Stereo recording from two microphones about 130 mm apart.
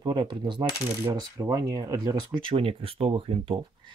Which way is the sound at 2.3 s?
45° right (ahead or behind).